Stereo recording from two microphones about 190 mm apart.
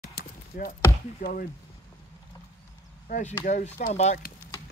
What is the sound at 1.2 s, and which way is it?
Speech, 50° left (ahead or behind).